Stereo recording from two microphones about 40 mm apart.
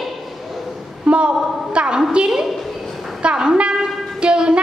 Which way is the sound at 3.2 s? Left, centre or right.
Right.